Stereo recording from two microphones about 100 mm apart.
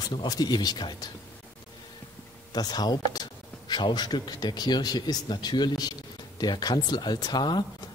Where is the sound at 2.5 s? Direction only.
40° left (ahead or behind).